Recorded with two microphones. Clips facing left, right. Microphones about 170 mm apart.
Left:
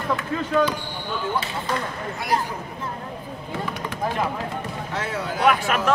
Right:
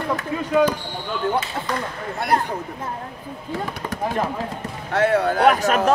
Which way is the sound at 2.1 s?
60° right (ahead or behind).